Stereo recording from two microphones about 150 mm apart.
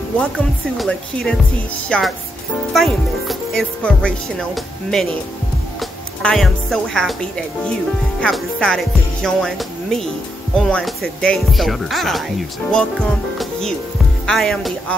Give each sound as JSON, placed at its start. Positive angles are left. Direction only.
{"t": 0.7, "sound": "speech", "side_deg": 5}